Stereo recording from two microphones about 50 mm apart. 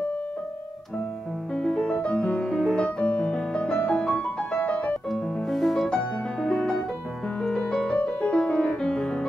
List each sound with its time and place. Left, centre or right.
1.5 s music: centre; by 4.9 s left
5.1 s music: centre
6.4 s piano: centre
7.4 s music: centre
7.9 s music: left